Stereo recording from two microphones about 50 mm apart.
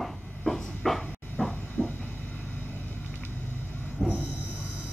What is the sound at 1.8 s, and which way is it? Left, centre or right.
Vehicle, left.